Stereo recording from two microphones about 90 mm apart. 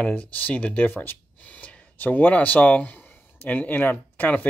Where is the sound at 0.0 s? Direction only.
15° left (ahead or behind).